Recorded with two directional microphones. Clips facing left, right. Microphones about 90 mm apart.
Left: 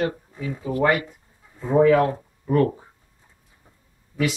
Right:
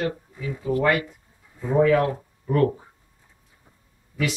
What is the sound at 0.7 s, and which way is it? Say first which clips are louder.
Speech: left 2 dB; 15° left (ahead or behind).